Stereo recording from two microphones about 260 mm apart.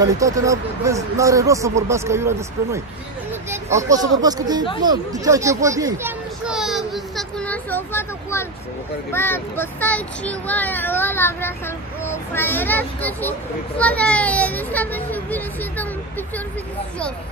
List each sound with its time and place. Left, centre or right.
0.0 s a child's voice: centre